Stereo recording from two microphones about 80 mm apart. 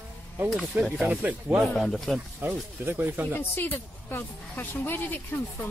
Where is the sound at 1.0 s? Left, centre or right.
Centre.